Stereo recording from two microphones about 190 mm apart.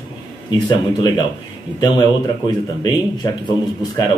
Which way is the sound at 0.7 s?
20° left (ahead or behind).